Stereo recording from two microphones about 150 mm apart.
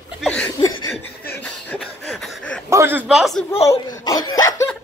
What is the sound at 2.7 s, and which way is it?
Speech, 15° right (ahead or behind).